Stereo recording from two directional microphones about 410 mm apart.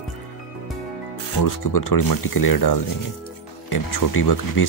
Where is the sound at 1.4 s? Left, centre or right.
Left.